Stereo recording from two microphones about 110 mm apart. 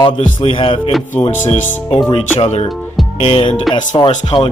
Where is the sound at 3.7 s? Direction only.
45° left (ahead or behind).